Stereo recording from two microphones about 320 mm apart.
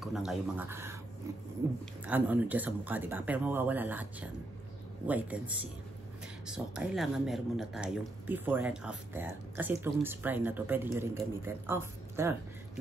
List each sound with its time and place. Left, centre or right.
0.0 s speech: centre
2.0 s speech: centre